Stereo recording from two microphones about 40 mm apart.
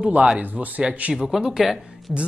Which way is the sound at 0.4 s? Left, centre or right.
Right.